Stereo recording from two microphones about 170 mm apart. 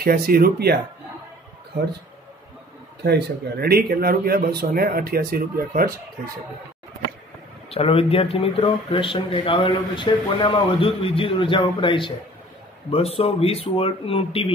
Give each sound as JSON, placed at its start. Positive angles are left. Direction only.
{"t": 0.0, "sound": "speech", "side_deg": -65}
{"t": 3.0, "sound": "speech", "side_deg": -75}
{"t": 7.7, "sound": "speech", "side_deg": 35}